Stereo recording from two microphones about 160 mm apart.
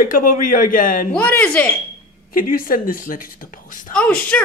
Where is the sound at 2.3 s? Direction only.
60° left (ahead or behind).